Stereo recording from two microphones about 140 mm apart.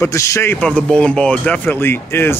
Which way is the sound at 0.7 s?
5° left (ahead or behind).